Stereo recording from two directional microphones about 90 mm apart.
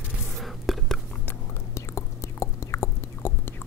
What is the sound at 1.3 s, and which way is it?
Whispering, 30° left (ahead or behind).